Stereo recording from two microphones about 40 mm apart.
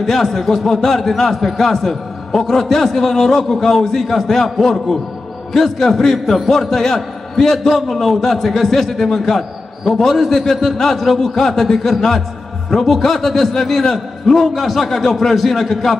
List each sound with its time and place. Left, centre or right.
0.0 s a man's voice: centre